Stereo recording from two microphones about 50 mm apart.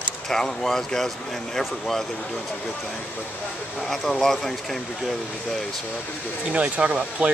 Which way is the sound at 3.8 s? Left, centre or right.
Centre.